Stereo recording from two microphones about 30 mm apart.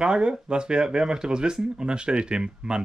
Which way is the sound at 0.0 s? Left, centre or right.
Right.